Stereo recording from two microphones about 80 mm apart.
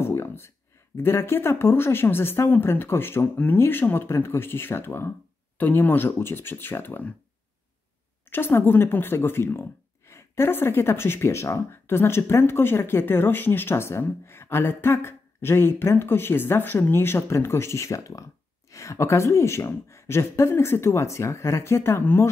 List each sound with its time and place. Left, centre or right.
0.0 s a sound: left
0.9 s speech: left
8.3 s speech: left